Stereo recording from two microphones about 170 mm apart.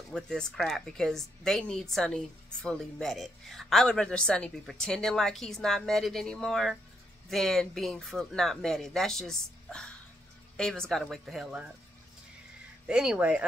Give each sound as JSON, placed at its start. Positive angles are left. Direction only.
{"t": 0.1, "sound": "a woman's voice", "side_deg": 5}
{"t": 12.8, "sound": "a woman's voice", "side_deg": -5}